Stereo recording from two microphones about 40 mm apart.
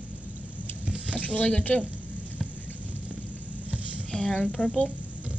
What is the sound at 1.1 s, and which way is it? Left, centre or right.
Speech, left.